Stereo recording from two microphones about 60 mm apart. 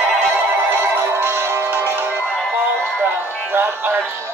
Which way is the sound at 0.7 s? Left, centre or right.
Right.